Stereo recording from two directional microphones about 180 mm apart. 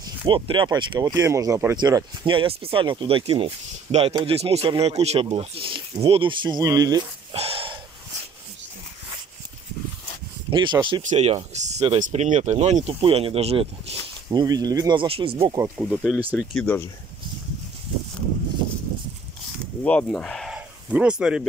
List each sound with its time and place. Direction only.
0.3 s speech: 25° right (ahead or behind)
7.3 s a sound: 30° right (ahead or behind)
10.5 s speech: 25° right (ahead or behind)
11.0 s speech: 40° right (ahead or behind)
14.3 s speech: 20° right (ahead or behind)
16.1 s speech: 5° right (ahead or behind)
16.5 s speech: 10° left (ahead or behind)
19.8 s speech: 5° left (ahead or behind)